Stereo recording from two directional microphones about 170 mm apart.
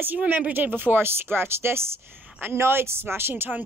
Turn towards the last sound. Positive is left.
turn(degrees=-10)  # may be behind; listen again after turning